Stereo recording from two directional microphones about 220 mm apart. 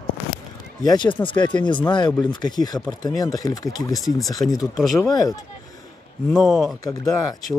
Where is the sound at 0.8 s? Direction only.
20° left (ahead or behind).